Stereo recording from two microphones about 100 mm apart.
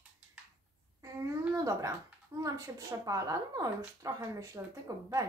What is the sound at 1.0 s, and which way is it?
A child's voice, 30° right (ahead or behind).